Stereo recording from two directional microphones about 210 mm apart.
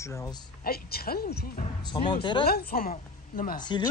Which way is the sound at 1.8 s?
20° left (ahead or behind).